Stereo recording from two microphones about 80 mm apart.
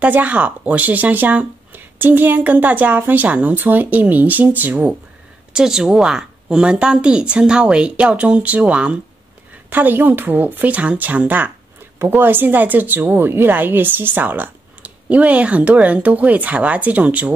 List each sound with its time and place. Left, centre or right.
0.0 s a woman's voice: centre
5.5 s a woman's voice: centre